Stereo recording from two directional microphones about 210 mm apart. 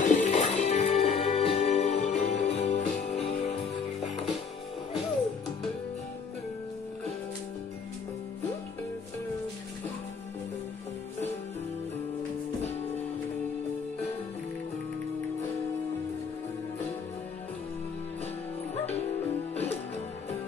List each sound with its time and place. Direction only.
0.0 s music: 35° left (ahead or behind)